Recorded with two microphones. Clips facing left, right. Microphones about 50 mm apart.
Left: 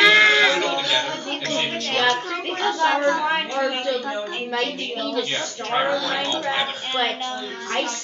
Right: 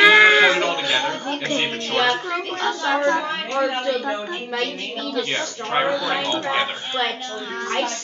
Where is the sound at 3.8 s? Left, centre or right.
Centre.